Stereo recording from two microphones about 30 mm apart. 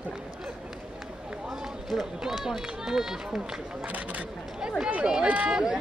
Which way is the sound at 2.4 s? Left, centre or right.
Centre.